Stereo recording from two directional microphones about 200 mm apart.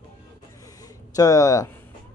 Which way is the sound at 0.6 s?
20° left (ahead or behind).